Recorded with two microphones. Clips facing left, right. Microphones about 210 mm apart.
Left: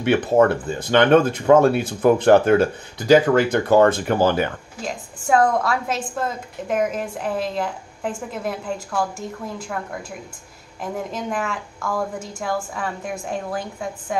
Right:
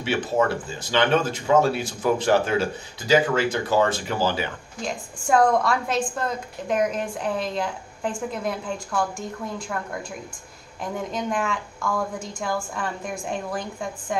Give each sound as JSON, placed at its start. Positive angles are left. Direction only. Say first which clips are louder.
{"t": 0.0, "sound": "speech", "louder": "left 7 dB", "side_deg": 55}
{"t": 4.8, "sound": "a woman's voice", "louder": "left 1 dB", "side_deg": 0}
{"t": 10.8, "sound": "a woman's voice", "louder": "left 1 dB", "side_deg": 5}